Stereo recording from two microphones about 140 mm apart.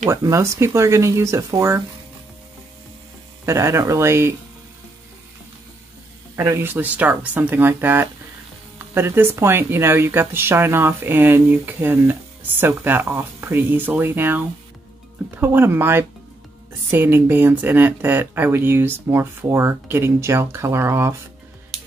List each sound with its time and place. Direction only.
0.1 s speech: 20° right (ahead or behind)
3.4 s speech: 20° right (ahead or behind)
6.3 s speech: 20° right (ahead or behind)